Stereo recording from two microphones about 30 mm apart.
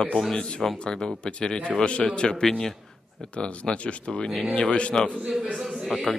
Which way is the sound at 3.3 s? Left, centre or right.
Left.